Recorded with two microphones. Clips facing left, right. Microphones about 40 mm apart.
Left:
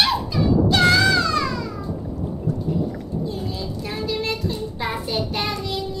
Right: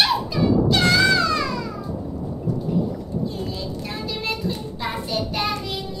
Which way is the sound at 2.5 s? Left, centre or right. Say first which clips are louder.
Right 1 dB; left.